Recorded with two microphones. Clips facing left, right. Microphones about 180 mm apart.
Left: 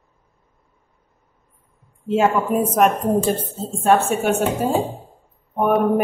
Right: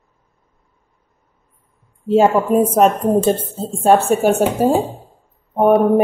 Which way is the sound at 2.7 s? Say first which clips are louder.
Right 3 dB; 25° right (ahead or behind).